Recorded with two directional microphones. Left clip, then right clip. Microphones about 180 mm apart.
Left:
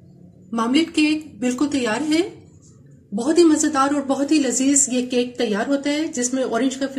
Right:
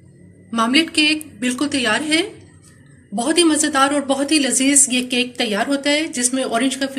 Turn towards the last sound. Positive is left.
turn(degrees=30)  # may be behind; listen again after turning